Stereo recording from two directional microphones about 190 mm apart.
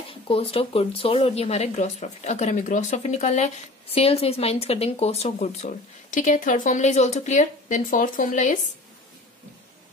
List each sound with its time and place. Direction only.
0.1 s speech: 30° left (ahead or behind)